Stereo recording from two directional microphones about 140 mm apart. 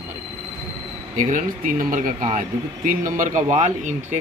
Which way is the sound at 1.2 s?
65° right (ahead or behind).